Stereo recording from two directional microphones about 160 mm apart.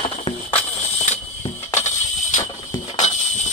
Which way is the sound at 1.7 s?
50° left (ahead or behind).